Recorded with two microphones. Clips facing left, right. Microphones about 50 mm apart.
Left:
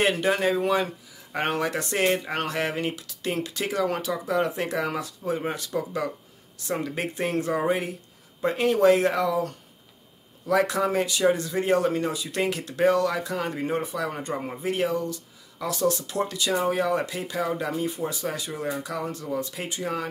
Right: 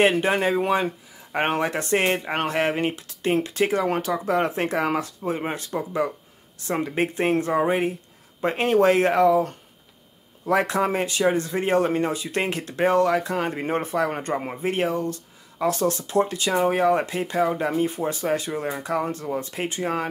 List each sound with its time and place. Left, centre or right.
0.0 s speech: right
5.7 s speech: right